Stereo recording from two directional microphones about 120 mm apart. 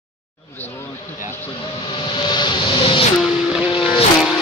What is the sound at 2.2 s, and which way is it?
Vehicle, 40° left (ahead or behind).